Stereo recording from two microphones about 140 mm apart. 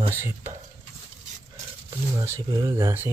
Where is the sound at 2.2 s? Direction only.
20° right (ahead or behind).